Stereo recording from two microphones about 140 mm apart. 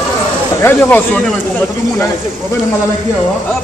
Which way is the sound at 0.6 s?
15° left (ahead or behind).